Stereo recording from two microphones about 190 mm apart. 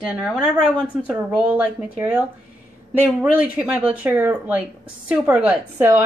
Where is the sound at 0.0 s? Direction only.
5° right (ahead or behind).